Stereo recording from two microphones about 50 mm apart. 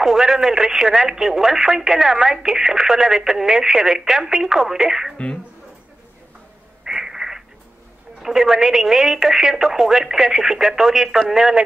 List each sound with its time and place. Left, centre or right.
0.0 s speech: centre
5.1 s speech: left
6.8 s a sound: centre
8.2 s speech: centre